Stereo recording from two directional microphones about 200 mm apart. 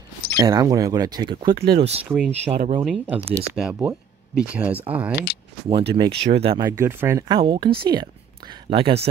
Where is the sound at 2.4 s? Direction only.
35° right (ahead or behind).